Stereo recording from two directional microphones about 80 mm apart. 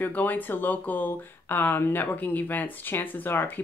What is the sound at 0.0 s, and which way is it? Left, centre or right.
Speech, left.